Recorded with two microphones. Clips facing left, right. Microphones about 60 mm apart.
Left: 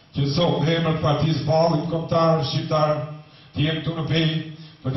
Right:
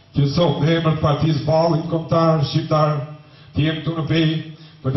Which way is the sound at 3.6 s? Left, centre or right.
Centre.